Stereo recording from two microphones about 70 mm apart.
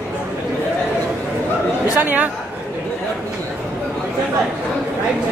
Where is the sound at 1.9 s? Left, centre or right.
Right.